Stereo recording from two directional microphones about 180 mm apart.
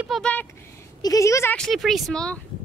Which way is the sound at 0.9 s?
20° left (ahead or behind).